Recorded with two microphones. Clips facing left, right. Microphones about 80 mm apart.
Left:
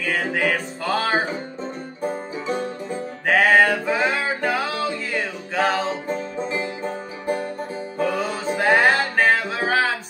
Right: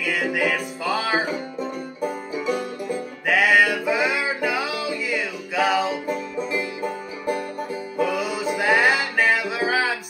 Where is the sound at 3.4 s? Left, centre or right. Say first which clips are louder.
Left 1 dB; left.